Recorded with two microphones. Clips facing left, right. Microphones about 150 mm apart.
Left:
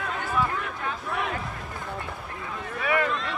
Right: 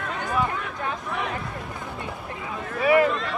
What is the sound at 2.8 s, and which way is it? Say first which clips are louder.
Speech: right 7 dB; 30° right (ahead or behind).